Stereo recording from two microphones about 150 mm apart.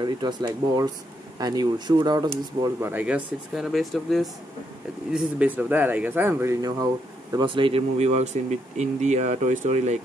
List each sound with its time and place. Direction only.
0.0 s speech: 30° right (ahead or behind)
2.2 s speech: 15° right (ahead or behind)
3.5 s speech: centre (ahead or behind); by 6.9 s 25° right (ahead or behind)
7.3 s speech: 35° right (ahead or behind); by 9.9 s 50° right (ahead or behind)